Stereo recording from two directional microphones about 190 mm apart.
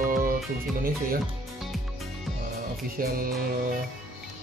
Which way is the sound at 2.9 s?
50° right (ahead or behind).